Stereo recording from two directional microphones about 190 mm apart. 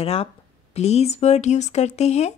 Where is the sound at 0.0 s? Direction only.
30° left (ahead or behind).